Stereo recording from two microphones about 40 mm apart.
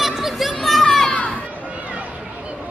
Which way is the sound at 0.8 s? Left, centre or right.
Centre.